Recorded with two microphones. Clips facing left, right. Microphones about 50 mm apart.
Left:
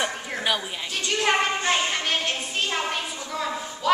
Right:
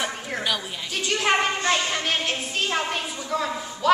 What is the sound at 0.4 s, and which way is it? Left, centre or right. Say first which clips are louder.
Speech: left 2 dB; centre.